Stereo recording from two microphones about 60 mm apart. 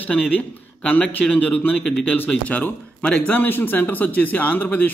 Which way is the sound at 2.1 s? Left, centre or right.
Left.